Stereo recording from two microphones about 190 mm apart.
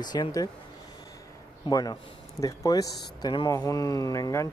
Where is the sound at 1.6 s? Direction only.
20° left (ahead or behind).